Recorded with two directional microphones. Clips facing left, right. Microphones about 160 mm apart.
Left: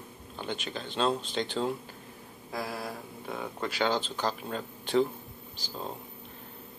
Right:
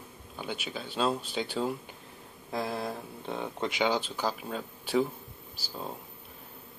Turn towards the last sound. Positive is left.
turn(degrees=-5)  # may be behind; listen again after turning